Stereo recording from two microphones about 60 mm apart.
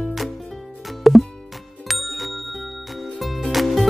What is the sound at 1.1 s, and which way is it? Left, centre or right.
Music, centre.